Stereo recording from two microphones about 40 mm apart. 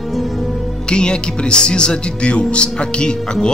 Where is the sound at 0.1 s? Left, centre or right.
Centre.